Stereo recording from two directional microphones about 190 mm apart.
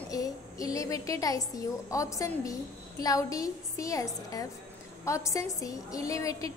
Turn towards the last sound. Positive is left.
turn(degrees=15)  # may be behind; listen again after turning